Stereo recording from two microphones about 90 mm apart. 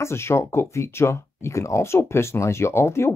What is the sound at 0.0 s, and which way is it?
Speech, 30° left (ahead or behind).